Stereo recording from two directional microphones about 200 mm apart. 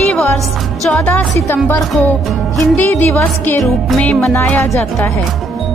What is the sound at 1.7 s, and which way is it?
Music, 5° left (ahead or behind).